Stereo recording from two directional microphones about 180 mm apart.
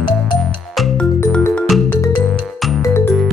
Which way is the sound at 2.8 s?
15° left (ahead or behind).